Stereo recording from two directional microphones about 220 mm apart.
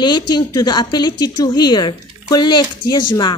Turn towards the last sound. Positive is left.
turn(degrees=20)  # may be behind; listen again after turning